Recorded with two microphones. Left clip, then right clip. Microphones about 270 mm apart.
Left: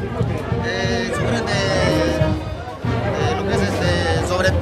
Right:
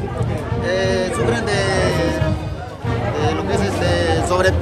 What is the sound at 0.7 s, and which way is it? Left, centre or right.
Music, centre.